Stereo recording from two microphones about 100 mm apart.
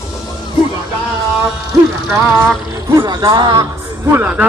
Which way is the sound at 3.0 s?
45° right (ahead or behind).